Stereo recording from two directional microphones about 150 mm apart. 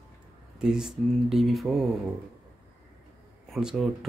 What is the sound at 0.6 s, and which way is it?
Speech, 5° right (ahead or behind).